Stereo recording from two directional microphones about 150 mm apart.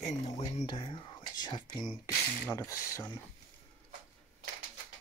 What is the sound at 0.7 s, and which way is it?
Speech, 30° left (ahead or behind).